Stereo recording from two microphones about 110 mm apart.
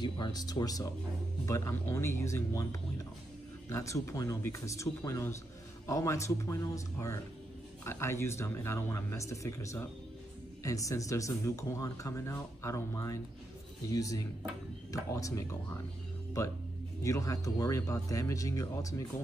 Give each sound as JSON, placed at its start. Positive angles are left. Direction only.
{"t": 0.0, "sound": "speech", "side_deg": 40}
{"t": 17.0, "sound": "speech", "side_deg": 30}